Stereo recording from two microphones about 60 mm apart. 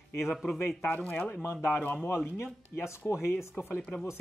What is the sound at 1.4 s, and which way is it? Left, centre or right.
Speech, left.